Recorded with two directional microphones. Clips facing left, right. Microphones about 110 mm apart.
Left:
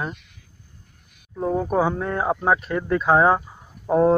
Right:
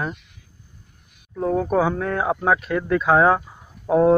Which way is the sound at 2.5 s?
20° left (ahead or behind).